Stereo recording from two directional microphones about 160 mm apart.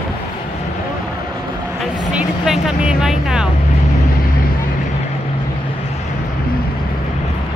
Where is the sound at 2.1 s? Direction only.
5° right (ahead or behind).